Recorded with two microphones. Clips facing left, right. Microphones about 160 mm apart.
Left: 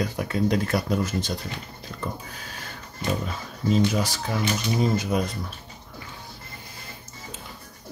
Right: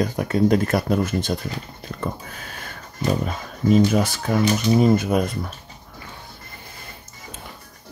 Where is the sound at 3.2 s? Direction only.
55° right (ahead or behind).